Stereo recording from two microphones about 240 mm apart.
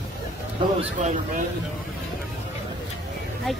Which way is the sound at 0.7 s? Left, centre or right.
Right.